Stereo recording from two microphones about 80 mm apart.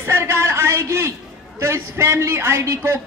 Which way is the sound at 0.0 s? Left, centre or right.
Right.